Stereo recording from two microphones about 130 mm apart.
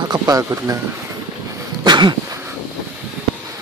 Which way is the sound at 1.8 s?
35° right (ahead or behind).